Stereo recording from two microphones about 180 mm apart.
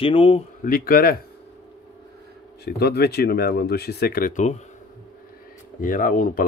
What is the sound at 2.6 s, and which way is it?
Speech, 60° left (ahead or behind).